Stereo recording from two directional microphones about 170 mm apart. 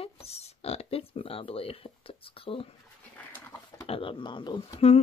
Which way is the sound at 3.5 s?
20° left (ahead or behind).